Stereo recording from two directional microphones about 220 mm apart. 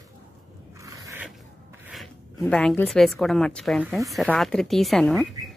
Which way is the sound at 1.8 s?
Centre (ahead or behind).